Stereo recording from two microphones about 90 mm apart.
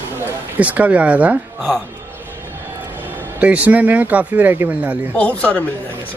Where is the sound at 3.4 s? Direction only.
15° right (ahead or behind).